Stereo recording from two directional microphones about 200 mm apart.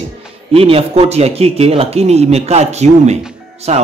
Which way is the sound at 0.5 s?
30° right (ahead or behind).